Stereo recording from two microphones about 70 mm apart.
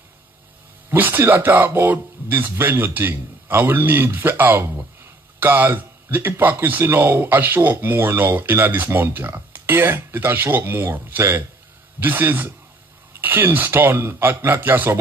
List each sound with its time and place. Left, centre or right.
0.8 s a man's voice: right